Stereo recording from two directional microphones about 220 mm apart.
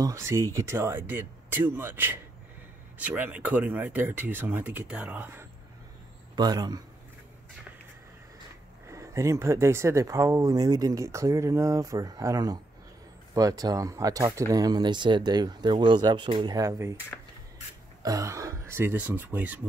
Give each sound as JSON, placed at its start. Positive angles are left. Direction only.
{"t": 0.0, "sound": "speech", "side_deg": -15}
{"t": 8.8, "sound": "speech", "side_deg": -15}
{"t": 18.0, "sound": "speech", "side_deg": -15}